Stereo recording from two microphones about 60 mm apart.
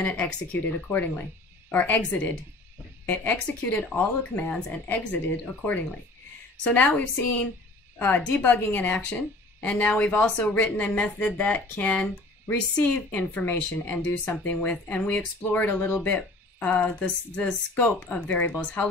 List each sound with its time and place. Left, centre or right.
0.0 s speech: left
17.0 s speech: left
18.2 s speech: left